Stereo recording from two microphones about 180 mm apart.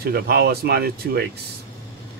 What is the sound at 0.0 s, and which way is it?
Speech, 60° right (ahead or behind).